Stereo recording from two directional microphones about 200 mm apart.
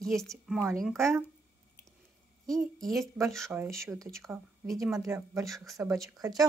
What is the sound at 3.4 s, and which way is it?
Speech, 10° right (ahead or behind).